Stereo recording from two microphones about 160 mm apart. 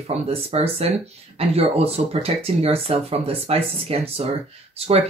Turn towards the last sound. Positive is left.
turn(degrees=-40)  # may be behind; listen again after turning